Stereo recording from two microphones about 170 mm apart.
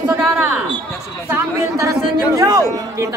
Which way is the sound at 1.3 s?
20° right (ahead or behind).